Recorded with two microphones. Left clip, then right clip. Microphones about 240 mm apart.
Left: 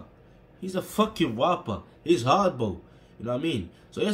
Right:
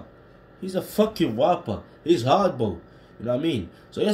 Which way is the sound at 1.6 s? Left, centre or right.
Centre.